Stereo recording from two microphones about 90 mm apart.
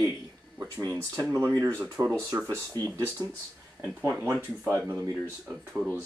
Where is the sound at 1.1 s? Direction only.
35° right (ahead or behind).